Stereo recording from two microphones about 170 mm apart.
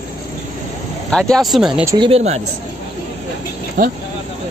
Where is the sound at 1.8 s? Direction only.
25° right (ahead or behind).